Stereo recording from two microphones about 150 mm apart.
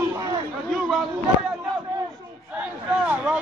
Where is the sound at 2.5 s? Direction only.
10° right (ahead or behind).